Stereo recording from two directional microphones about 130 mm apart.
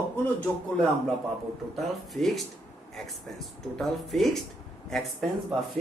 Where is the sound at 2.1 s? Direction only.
Centre (ahead or behind).